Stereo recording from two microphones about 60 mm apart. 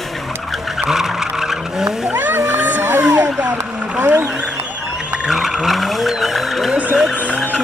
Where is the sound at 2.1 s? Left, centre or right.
Right.